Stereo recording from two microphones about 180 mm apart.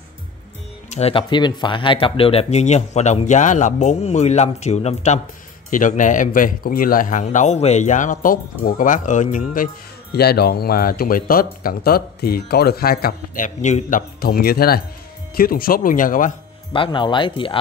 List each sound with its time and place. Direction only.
0.8 s speech: 35° left (ahead or behind)
10.1 s speech: 60° left (ahead or behind)
16.7 s speech: 25° left (ahead or behind)